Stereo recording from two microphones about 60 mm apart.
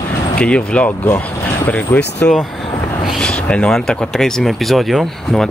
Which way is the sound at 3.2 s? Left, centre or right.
Centre.